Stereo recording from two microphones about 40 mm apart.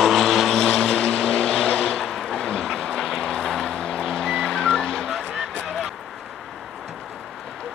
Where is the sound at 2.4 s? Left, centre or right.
Centre.